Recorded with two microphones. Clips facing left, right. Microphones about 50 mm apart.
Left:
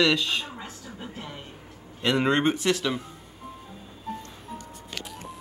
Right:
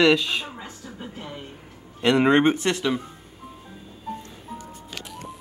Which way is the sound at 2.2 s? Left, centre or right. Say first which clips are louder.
Right 5 dB; centre.